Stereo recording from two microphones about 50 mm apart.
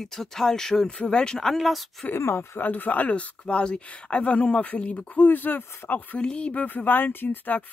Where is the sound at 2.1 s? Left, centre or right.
Left.